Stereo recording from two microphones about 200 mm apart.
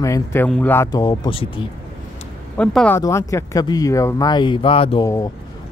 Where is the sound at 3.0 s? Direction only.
15° left (ahead or behind).